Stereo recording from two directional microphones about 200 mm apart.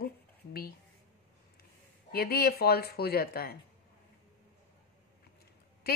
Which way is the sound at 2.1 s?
50° left (ahead or behind).